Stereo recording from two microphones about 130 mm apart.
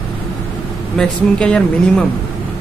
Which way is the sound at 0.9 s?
5° left (ahead or behind).